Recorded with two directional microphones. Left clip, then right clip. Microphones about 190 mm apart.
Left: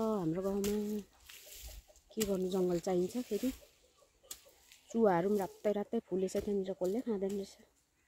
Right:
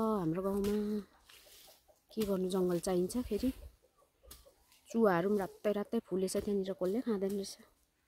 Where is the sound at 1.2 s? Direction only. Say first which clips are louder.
Left 5 dB; 70° left (ahead or behind).